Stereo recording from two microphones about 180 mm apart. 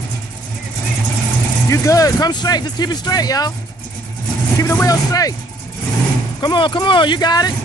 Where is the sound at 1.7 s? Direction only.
20° left (ahead or behind).